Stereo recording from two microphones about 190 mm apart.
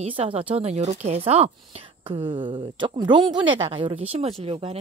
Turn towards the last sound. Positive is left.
turn(degrees=-30)  # may be behind; listen again after turning